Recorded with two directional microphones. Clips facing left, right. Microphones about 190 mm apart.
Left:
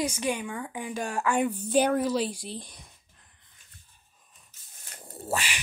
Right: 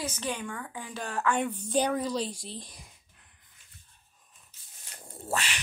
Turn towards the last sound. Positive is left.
turn(degrees=5)  # may be behind; listen again after turning